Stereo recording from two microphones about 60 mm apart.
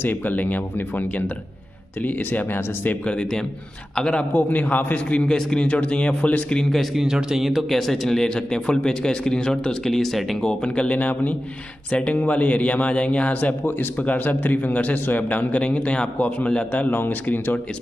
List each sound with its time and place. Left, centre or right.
0.0 s a man's voice: left
3.1 s a man's voice: centre
5.3 s a man's voice: centre
6.8 s speech: centre
10.4 s a man's voice: centre; by 17.6 s left